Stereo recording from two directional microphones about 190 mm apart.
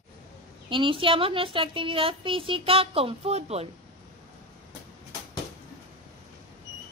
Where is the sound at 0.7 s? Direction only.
25° right (ahead or behind).